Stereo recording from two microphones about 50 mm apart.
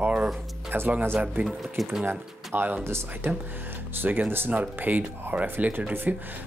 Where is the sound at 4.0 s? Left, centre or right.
Right.